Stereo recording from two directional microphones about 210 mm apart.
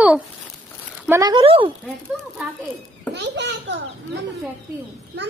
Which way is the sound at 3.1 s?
55° right (ahead or behind).